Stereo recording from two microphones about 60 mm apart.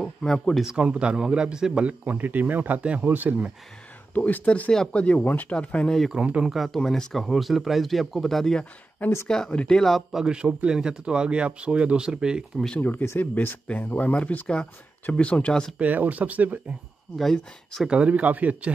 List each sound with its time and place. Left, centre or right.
0.0 s speech: centre
0.7 s speech: centre
1.9 s speech: right
4.1 s speech: left
5.2 s speech: left
5.5 s speech: centre
6.1 s speech: centre
6.5 s speech: centre
9.0 s speech: left; by 10.0 s centre
10.1 s speech: centre
12.7 s speech: left; by 15.7 s centre
15.8 s speech: right
17.2 s speech: centre
17.8 s speech: centre